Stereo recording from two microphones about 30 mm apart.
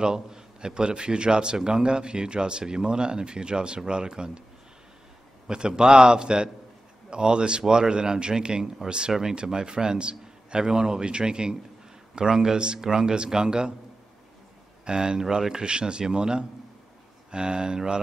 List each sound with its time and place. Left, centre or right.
0.0 s a man's voice: right
5.5 s a man's voice: right
14.9 s a man's voice: right